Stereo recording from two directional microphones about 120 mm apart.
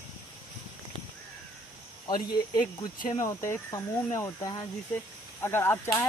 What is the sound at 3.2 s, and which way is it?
Speech, 25° left (ahead or behind).